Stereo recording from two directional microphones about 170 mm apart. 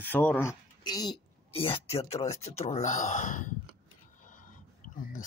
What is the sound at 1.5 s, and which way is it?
Speech, 35° left (ahead or behind).